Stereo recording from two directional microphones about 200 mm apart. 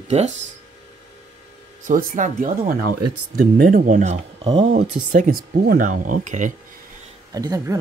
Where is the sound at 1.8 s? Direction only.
40° right (ahead or behind).